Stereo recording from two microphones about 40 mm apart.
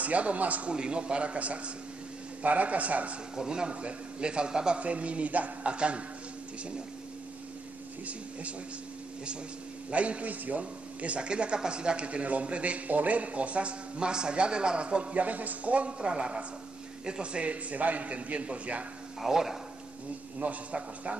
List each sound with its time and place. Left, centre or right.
0.0 s a man's voice: right
0.7 s a man's voice: right
3.3 s speech: centre
4.7 s a man's voice: right
9.8 s a man's voice: right
15.1 s a man's voice: right
16.1 s a woman's voice: centre; by 18.9 s right
19.2 s a woman's voice: centre
20.3 s a man's voice: right